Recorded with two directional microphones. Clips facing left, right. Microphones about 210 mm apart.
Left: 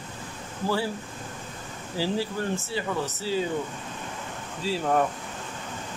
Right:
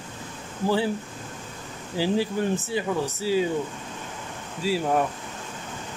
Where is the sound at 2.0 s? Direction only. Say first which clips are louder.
Right 4 dB; 15° right (ahead or behind).